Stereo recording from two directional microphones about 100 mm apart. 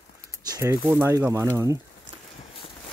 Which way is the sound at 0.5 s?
40° right (ahead or behind).